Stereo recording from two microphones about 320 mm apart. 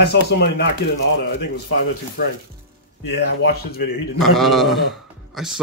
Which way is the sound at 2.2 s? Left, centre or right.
Left.